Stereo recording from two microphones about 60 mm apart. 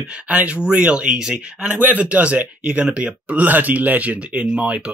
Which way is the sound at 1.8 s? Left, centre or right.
Right.